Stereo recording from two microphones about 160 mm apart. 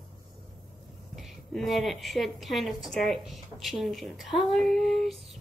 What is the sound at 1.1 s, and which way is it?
A woman's voice, centre (ahead or behind).